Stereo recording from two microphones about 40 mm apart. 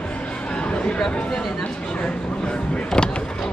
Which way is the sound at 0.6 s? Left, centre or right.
Left.